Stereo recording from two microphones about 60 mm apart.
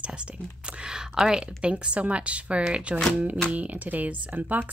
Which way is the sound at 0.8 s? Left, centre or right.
Centre.